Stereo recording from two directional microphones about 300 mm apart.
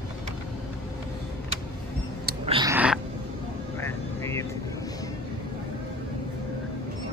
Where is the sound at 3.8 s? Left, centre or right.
Centre.